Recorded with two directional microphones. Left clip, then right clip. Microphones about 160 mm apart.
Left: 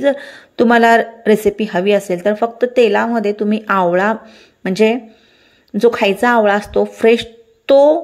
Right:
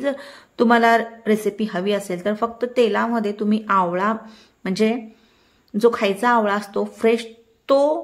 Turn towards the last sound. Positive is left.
turn(degrees=20)  # may be behind; listen again after turning